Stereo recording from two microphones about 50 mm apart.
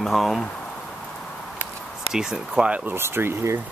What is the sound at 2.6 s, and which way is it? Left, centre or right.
Speech, right.